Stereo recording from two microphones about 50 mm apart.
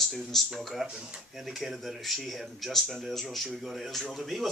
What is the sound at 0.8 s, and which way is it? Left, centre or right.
Speech, centre.